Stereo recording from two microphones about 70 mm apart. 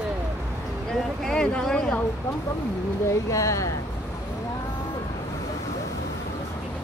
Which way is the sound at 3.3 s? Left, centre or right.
Left.